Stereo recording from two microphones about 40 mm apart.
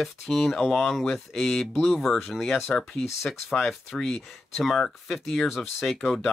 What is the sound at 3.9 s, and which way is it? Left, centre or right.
Speech, centre.